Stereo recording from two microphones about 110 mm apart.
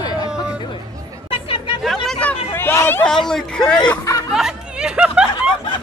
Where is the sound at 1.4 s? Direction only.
55° left (ahead or behind).